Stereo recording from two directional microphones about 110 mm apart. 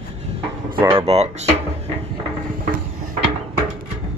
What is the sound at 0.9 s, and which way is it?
Speech, 65° right (ahead or behind).